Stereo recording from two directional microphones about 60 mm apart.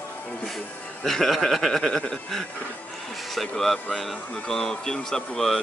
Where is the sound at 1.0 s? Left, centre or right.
Centre.